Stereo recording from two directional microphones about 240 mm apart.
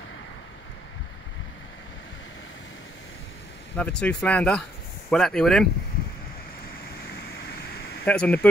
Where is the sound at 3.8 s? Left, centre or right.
Centre.